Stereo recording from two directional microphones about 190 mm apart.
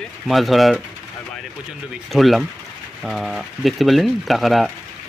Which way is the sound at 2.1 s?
Centre (ahead or behind).